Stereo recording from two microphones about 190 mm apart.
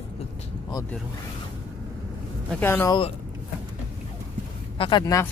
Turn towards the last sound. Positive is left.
turn(degrees=20)  # may be behind; listen again after turning